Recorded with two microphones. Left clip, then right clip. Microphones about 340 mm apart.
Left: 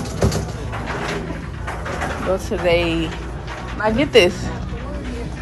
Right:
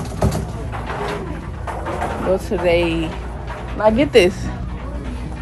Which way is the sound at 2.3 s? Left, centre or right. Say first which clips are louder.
Right 1 dB; centre.